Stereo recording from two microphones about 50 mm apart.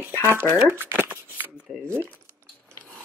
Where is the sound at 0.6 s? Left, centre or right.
Right.